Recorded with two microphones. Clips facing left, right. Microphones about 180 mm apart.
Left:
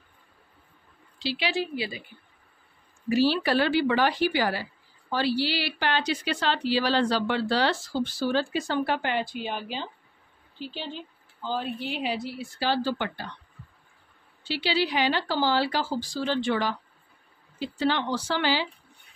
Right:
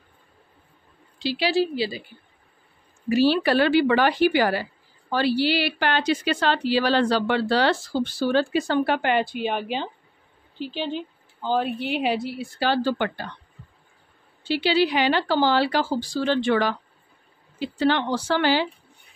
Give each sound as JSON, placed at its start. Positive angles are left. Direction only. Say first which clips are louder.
{"t": 1.2, "sound": "a woman's voice", "louder": "right 6 dB", "side_deg": -40}
{"t": 3.2, "sound": "speech", "louder": "right 4 dB", "side_deg": -65}
{"t": 14.5, "sound": "speech", "louder": "right 6 dB", "side_deg": -55}